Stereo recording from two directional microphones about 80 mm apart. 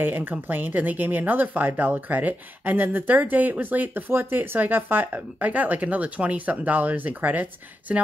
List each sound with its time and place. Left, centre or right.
0.0 s speech: right